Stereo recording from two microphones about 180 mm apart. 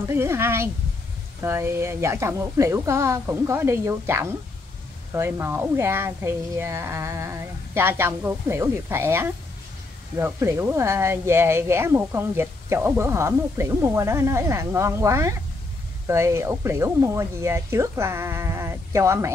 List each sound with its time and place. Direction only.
0.0 s speech: 15° right (ahead or behind)